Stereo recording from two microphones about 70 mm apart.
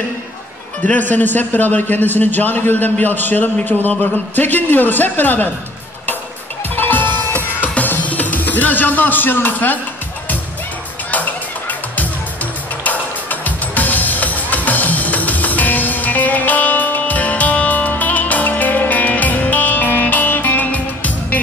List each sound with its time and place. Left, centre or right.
0.8 s a man's voice: left
6.7 s music: left
12.8 s music: left